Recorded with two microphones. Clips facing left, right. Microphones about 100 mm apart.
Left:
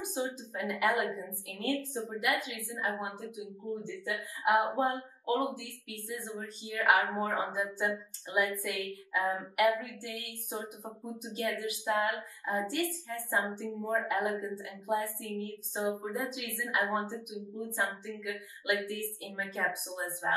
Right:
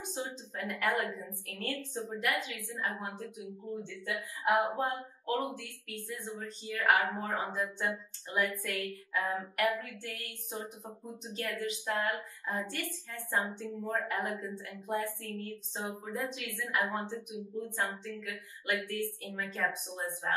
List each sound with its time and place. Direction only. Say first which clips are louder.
0.1 s speech: left 2 dB; 20° left (ahead or behind)